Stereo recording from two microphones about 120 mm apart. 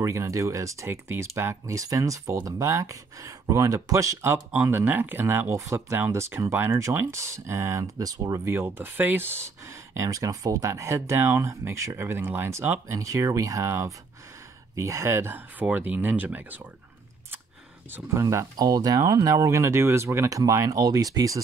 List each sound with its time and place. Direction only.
0.0 s speech: 25° right (ahead or behind)
17.9 s speech: 25° right (ahead or behind)